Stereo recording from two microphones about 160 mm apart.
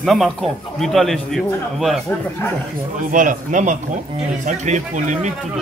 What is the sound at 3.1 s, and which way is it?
Speech, 55° right (ahead or behind).